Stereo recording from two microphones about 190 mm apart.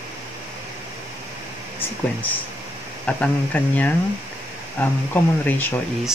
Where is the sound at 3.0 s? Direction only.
5° left (ahead or behind).